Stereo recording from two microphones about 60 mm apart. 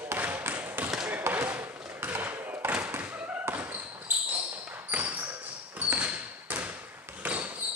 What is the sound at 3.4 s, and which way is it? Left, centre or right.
Basketball bounce, right.